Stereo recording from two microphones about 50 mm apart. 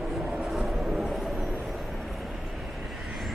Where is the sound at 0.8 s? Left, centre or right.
Centre.